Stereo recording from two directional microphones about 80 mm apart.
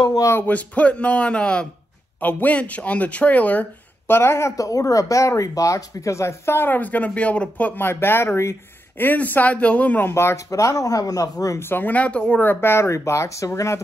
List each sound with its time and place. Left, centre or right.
0.2 s speech: left
0.5 s speech: centre
4.1 s speech: left
10.1 s speech: left
11.6 s speech: left
12.4 s speech: left